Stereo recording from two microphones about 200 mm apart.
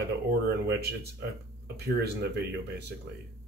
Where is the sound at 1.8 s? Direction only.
55° right (ahead or behind).